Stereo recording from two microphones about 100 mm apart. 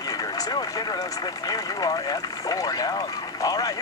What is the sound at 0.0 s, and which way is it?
Speech, 40° left (ahead or behind).